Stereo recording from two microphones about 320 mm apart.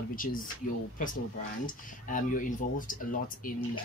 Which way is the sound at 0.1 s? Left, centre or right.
Left.